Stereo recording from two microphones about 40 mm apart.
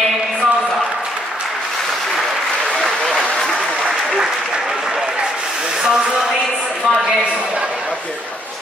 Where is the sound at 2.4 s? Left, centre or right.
Left.